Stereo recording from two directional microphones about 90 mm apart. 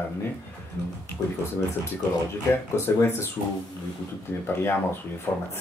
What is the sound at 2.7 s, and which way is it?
Speech, 30° left (ahead or behind).